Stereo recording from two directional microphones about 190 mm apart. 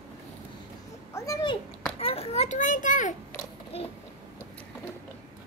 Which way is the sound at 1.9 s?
30° left (ahead or behind).